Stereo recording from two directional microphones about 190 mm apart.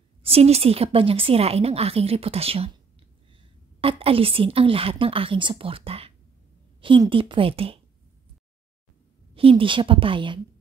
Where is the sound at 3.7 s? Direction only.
30° right (ahead or behind).